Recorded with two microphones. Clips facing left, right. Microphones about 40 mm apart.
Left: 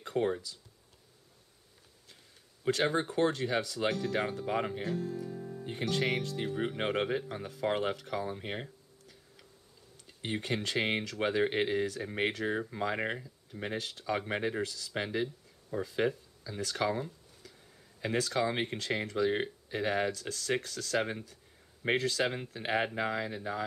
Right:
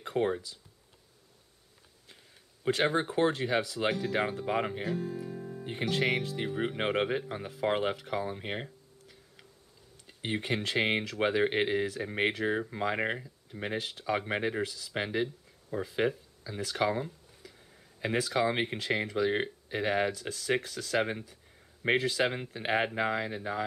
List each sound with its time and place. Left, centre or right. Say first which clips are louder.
0.0 s speech: right 1 dB; centre
2.6 s speech: right 2 dB; centre